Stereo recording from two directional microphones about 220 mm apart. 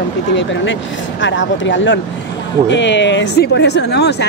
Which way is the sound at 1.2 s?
60° left (ahead or behind).